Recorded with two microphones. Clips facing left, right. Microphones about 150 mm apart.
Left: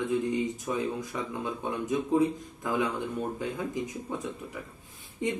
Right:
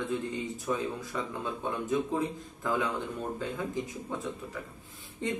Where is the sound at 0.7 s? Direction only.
15° left (ahead or behind).